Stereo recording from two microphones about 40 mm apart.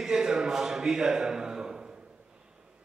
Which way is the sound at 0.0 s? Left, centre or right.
Centre.